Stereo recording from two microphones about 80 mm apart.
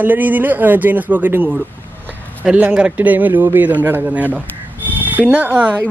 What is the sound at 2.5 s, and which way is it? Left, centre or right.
A man's voice, centre.